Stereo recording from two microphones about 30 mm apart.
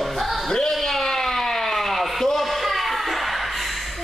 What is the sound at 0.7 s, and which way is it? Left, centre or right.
Siren, centre.